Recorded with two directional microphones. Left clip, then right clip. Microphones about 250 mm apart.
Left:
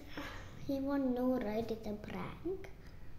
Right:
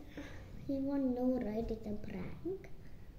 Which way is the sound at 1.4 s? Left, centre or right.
Centre.